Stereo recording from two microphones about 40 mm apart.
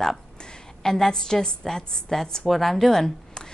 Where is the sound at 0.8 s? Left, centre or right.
Centre.